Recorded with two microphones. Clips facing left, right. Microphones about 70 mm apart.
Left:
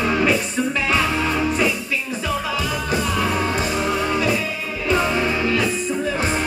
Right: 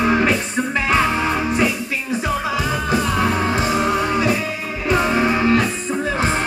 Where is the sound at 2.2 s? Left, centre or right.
Right.